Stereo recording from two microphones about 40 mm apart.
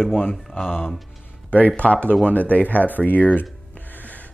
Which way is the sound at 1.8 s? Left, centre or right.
Left.